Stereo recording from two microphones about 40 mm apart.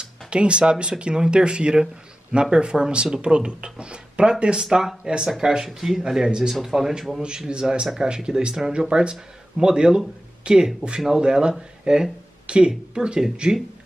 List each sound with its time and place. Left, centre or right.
0.0 s speech: right
4.6 s speech: centre
5.0 s speech: right
5.7 s speech: centre
7.2 s speech: centre